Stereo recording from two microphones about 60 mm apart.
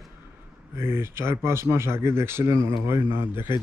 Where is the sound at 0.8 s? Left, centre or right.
Right.